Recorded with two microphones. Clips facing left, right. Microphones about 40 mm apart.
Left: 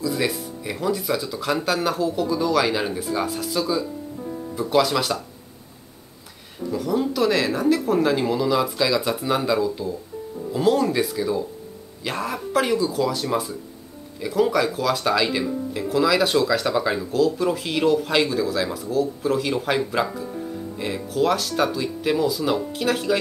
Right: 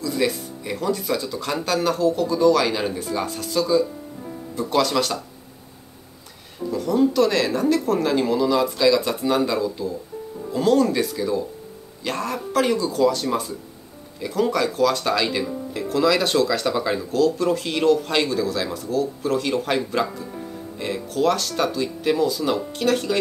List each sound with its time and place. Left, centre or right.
0.0 s speech: centre
6.7 s speech: centre